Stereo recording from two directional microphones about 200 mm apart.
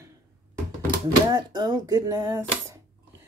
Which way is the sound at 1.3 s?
20° right (ahead or behind).